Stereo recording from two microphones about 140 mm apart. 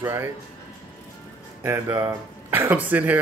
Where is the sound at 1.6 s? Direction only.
20° right (ahead or behind).